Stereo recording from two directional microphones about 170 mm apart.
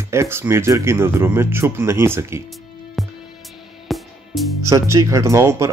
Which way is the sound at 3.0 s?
Centre (ahead or behind).